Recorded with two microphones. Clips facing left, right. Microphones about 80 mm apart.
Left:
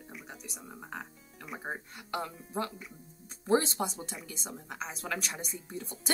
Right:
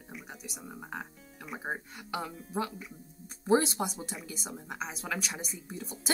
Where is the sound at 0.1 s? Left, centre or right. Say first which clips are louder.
Right 3 dB; centre.